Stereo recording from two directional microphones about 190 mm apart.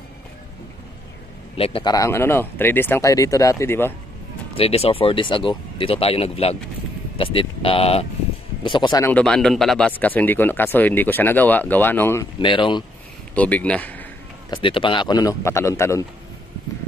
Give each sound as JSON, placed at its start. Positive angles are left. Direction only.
{"t": 1.6, "sound": "speech", "side_deg": 30}
{"t": 2.0, "sound": "speech", "side_deg": 15}
{"t": 4.6, "sound": "speech", "side_deg": 30}
{"t": 9.0, "sound": "speech", "side_deg": 5}
{"t": 12.4, "sound": "speech", "side_deg": 25}
{"t": 13.3, "sound": "speech", "side_deg": 5}
{"t": 14.5, "sound": "speech", "side_deg": 25}